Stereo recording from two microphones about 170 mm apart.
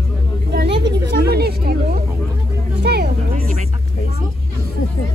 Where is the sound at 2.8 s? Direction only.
75° right (ahead or behind).